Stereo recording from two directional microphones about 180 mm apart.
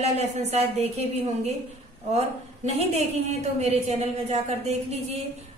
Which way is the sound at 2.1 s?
40° right (ahead or behind).